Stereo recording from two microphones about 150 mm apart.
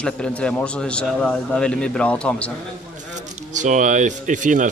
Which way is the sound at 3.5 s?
55° right (ahead or behind).